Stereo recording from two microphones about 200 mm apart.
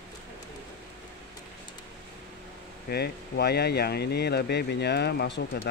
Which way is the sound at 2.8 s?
50° left (ahead or behind).